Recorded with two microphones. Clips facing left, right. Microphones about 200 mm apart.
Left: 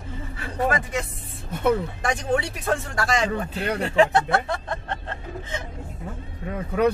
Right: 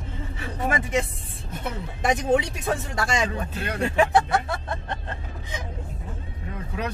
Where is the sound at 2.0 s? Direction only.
20° right (ahead or behind).